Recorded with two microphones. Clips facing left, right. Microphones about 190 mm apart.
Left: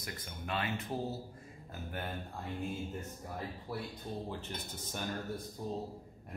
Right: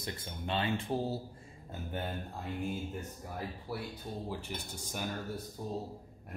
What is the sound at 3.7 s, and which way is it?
Speech, 5° right (ahead or behind).